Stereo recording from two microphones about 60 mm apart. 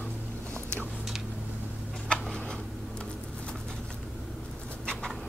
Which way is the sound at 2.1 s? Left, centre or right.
Centre.